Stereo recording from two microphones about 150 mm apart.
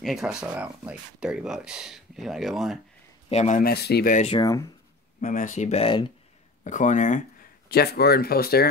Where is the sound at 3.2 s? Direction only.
50° left (ahead or behind).